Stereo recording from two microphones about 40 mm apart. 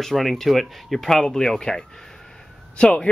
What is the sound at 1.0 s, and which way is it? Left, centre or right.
Speech, centre.